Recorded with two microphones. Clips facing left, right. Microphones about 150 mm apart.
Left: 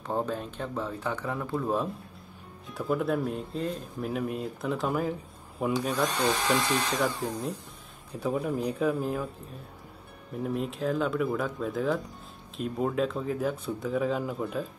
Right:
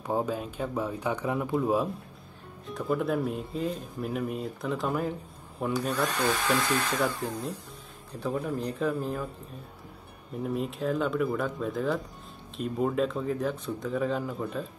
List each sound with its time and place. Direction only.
0.0 s speech: 10° right (ahead or behind)
2.7 s speech: centre (ahead or behind)
5.9 s speech: 15° left (ahead or behind)
7.2 s speech: centre (ahead or behind)
10.4 s speech: centre (ahead or behind)